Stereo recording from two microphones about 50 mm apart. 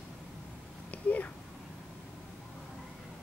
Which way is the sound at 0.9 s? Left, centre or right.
Left.